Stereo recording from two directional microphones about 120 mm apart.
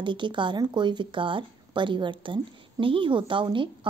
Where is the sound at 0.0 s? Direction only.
40° right (ahead or behind).